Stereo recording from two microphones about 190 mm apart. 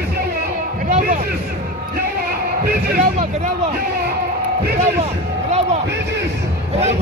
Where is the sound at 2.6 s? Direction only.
55° right (ahead or behind).